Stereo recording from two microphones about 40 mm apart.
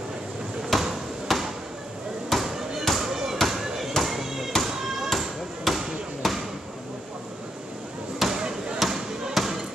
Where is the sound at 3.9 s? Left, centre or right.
Centre.